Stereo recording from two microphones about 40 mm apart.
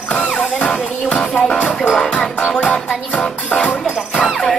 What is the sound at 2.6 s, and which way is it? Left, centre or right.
Music, left.